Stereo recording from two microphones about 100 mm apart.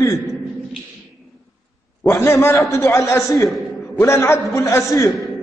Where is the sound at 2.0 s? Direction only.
25° left (ahead or behind).